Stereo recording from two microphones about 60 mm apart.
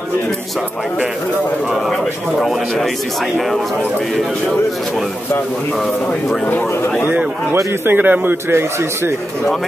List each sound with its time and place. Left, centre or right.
1.9 s speech: centre
7.8 s a man's voice: right